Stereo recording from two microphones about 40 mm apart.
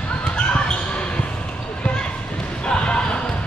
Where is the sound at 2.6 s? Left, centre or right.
Left.